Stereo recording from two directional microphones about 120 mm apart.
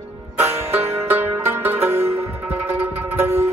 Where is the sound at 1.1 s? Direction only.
15° right (ahead or behind).